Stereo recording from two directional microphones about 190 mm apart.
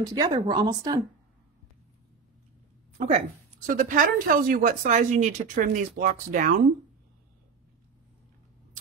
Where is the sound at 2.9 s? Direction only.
35° right (ahead or behind).